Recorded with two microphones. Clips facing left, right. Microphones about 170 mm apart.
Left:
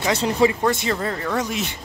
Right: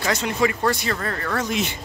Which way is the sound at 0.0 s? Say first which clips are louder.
Left 3 dB; 30° left (ahead or behind).